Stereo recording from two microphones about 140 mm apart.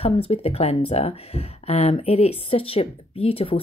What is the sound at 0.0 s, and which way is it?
Speech, 45° left (ahead or behind).